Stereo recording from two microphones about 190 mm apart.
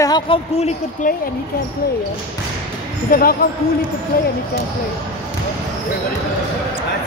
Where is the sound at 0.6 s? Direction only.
35° left (ahead or behind).